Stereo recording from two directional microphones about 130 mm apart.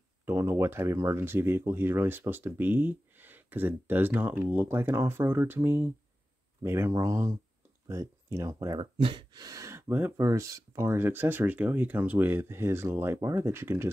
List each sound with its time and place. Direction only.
0.2 s speech: 20° right (ahead or behind)
8.9 s speech: 40° right (ahead or behind); by 13.8 s 20° right (ahead or behind)